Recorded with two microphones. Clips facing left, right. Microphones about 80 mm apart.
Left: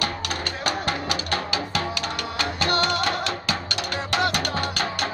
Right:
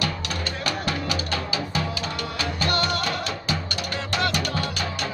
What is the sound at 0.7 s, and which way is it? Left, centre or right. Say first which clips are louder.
Music: left 2 dB; left.